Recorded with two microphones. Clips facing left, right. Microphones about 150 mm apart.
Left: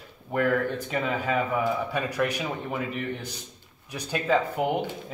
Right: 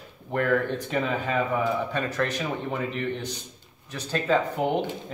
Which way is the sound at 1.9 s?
10° left (ahead or behind).